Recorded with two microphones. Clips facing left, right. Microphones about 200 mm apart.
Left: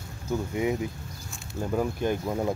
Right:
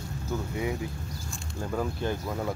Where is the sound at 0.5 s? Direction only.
20° left (ahead or behind).